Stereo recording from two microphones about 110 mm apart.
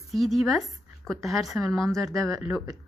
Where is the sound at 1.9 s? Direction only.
30° right (ahead or behind).